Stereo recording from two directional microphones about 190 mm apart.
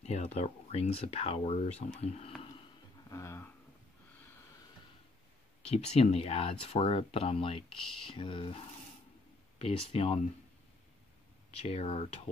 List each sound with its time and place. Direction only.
0.0 s speech: 35° left (ahead or behind)
3.1 s speech: 15° left (ahead or behind)
5.6 s speech: 35° left (ahead or behind)
11.6 s speech: 30° left (ahead or behind)